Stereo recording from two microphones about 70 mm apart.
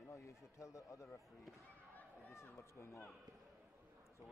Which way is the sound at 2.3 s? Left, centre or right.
Left.